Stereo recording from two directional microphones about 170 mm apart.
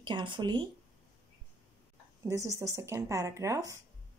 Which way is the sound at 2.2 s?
20° right (ahead or behind).